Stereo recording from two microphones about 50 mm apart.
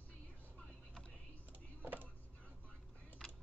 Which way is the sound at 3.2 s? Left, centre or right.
Centre.